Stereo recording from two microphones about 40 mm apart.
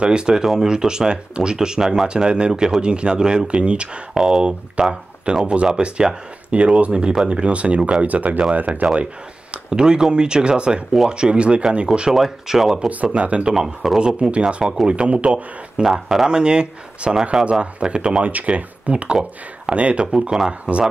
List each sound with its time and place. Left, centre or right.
0.0 s speech: right
4.1 s speech: centre
4.8 s speech: right
9.7 s speech: centre
12.1 s speech: centre
13.0 s speech: right
13.5 s speech: centre
14.9 s speech: right
15.8 s speech: centre
16.3 s speech: right
18.2 s speech: right
20.1 s speech: right